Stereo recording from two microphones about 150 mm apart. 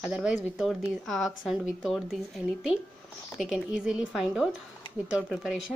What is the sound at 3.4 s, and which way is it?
Speech, 5° right (ahead or behind).